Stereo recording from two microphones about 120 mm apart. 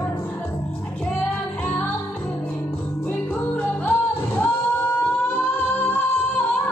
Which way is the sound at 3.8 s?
15° left (ahead or behind).